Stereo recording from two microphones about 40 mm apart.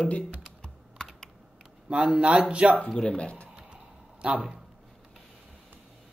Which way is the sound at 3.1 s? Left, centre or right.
Left.